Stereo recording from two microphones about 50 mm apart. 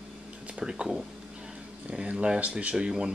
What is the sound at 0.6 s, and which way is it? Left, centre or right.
Speech, centre.